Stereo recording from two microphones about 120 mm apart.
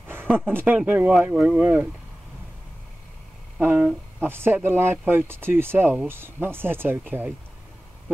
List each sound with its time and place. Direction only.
0.0 s a sound: 20° right (ahead or behind)
0.5 s speech: 15° right (ahead or behind)
3.5 s speech: 15° right (ahead or behind)